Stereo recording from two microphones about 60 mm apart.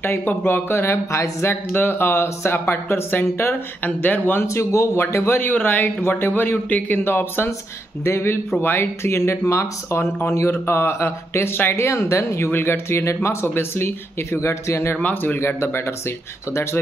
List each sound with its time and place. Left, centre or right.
0.0 s speech: left
4.5 s speech: left
5.4 s speech: left
7.1 s speech: left
12.4 s speech: left
13.0 s speech: left
15.0 s speech: left
15.3 s speech: left